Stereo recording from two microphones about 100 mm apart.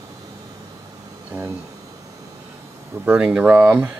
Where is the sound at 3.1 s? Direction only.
10° right (ahead or behind).